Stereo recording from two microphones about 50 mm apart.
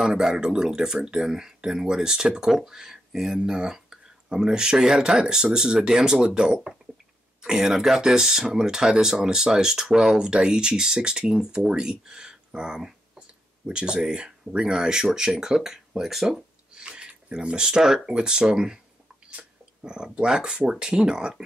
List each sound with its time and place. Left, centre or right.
0.0 s speech: centre
16.7 s a sound: centre
17.8 s speech: centre